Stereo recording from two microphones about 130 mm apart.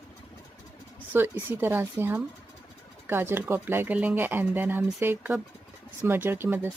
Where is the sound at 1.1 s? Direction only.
15° right (ahead or behind).